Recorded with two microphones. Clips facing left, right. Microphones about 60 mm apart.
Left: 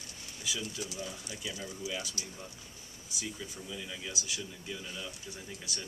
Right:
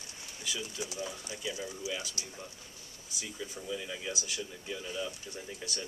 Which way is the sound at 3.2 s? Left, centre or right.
Centre.